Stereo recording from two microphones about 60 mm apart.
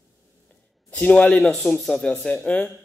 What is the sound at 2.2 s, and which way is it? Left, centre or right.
Speech, centre.